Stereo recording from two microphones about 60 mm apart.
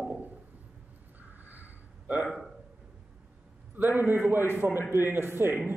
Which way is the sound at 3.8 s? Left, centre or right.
Right.